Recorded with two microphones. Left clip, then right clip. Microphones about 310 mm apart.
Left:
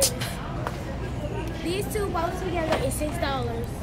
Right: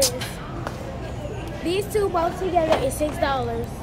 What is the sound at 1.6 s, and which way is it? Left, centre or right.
Speech, centre.